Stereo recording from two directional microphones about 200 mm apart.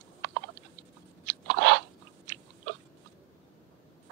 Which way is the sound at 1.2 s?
60° right (ahead or behind).